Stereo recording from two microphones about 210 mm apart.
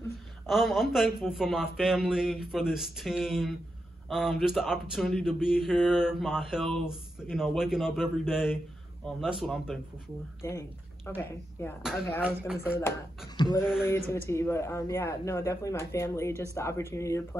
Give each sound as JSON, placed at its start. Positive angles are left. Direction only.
{"t": 0.5, "sound": "a man's voice", "side_deg": 0}
{"t": 11.1, "sound": "a man's voice", "side_deg": 10}
{"t": 12.2, "sound": "a man's voice", "side_deg": -5}
{"t": 13.4, "sound": "a sound", "side_deg": 20}
{"t": 13.8, "sound": "a man's voice", "side_deg": 10}